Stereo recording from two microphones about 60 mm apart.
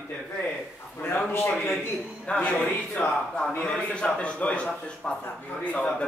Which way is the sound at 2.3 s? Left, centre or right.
Centre.